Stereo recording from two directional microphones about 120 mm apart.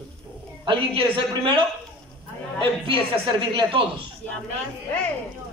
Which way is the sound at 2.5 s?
45° right (ahead or behind).